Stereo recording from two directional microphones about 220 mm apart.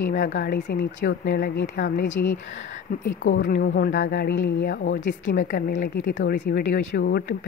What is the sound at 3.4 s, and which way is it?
Speech, 45° left (ahead or behind).